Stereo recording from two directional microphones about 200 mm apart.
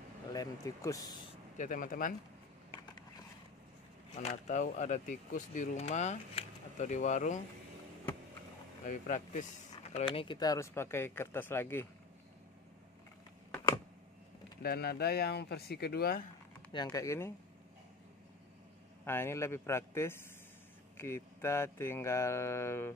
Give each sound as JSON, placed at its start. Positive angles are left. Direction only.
{"t": 0.3, "sound": "speech", "side_deg": 15}
{"t": 1.6, "sound": "speech", "side_deg": 40}
{"t": 4.3, "sound": "speech", "side_deg": 40}
{"t": 8.8, "sound": "speech", "side_deg": 40}
{"t": 9.9, "sound": "speech", "side_deg": 25}
{"t": 14.6, "sound": "speech", "side_deg": 55}
{"t": 16.7, "sound": "speech", "side_deg": 20}
{"t": 19.0, "sound": "speech", "side_deg": 10}